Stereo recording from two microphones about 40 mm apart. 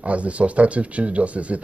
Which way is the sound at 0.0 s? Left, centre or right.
Right.